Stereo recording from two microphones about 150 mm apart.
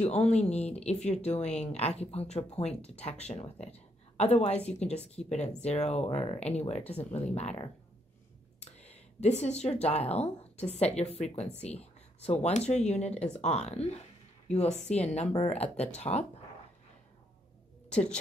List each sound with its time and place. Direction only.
0.0 s speech: 45° left (ahead or behind)